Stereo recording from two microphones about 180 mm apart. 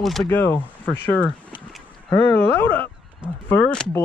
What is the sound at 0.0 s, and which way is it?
Speech, centre (ahead or behind).